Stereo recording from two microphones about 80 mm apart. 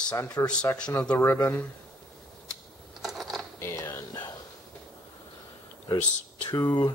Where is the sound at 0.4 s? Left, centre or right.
Left.